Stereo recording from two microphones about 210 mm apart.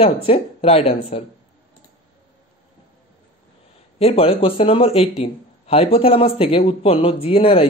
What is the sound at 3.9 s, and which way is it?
Speech, 30° left (ahead or behind).